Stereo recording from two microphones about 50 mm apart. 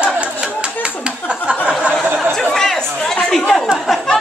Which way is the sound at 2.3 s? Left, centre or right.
Centre.